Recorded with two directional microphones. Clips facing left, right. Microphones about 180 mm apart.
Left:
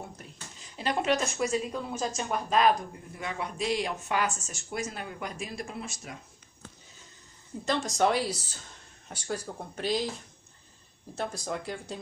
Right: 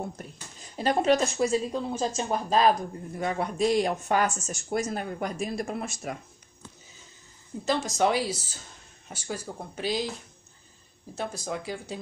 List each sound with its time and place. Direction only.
0.7 s speech: 40° right (ahead or behind)
3.2 s speech: 45° right (ahead or behind)
7.6 s speech: 5° right (ahead or behind)
11.1 s speech: centre (ahead or behind)